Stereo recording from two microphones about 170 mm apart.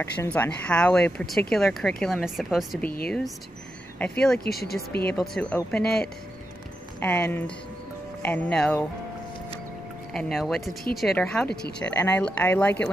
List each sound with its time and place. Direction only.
0.0 s a woman's voice: 10° left (ahead or behind)
4.0 s a woman's voice: 5° left (ahead or behind)
4.5 s speech: 65° left (ahead or behind)
5.0 s a woman's voice: centre (ahead or behind)
10.1 s a woman's voice: centre (ahead or behind)